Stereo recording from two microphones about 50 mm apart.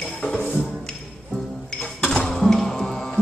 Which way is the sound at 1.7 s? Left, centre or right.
Centre.